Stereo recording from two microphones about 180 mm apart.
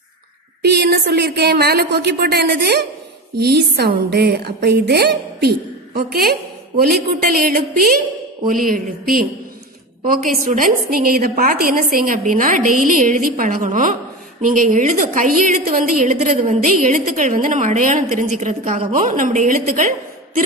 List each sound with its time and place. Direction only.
0.6 s a woman's voice: 65° right (ahead or behind); by 19.9 s 45° right (ahead or behind)